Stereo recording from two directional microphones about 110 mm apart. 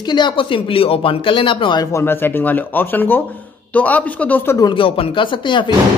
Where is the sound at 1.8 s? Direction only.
25° left (ahead or behind).